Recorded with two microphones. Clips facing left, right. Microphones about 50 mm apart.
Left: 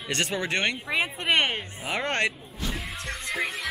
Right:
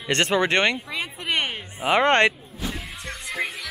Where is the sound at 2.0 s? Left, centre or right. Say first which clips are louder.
Right 8 dB; right.